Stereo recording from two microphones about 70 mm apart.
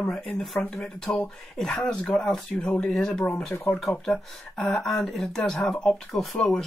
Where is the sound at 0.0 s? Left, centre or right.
Centre.